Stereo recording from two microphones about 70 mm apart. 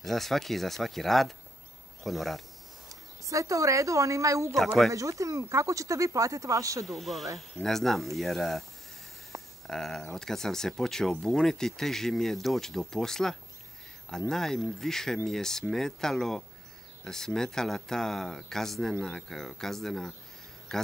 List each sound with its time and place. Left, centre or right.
0.0 s speech: centre
2.9 s speech: right
6.9 s speech: centre
9.3 s a sound: right
9.7 s speech: centre